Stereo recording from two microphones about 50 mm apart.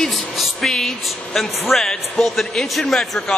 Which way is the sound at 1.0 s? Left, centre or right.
Centre.